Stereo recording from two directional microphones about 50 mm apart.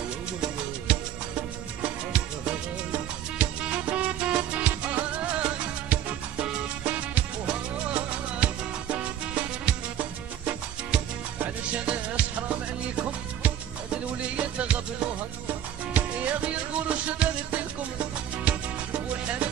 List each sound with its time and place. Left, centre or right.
0.4 s music: right
14.3 s music: right